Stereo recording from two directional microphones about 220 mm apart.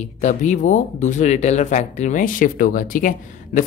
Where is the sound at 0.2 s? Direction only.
35° left (ahead or behind).